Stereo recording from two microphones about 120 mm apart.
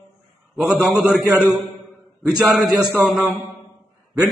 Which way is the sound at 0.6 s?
5° right (ahead or behind).